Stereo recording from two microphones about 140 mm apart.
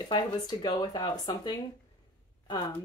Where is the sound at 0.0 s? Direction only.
30° left (ahead or behind).